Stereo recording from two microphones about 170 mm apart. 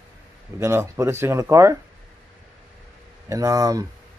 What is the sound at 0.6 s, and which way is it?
Speech, 15° right (ahead or behind).